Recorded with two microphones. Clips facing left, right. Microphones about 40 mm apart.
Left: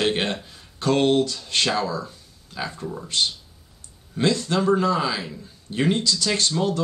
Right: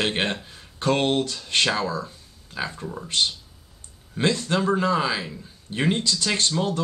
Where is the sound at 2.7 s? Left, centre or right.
Centre.